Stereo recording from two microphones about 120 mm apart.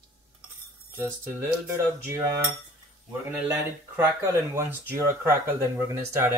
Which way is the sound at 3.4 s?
20° right (ahead or behind).